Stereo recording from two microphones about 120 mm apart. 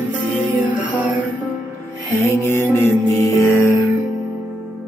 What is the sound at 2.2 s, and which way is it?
Music, 20° left (ahead or behind).